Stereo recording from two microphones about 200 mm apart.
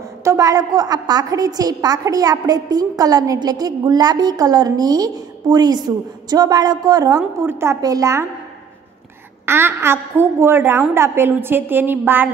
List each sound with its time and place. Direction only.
0.2 s a woman's voice: 15° right (ahead or behind)
9.5 s a woman's voice: 10° right (ahead or behind)